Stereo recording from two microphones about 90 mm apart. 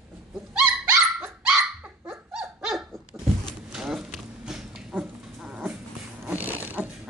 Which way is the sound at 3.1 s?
20° right (ahead or behind).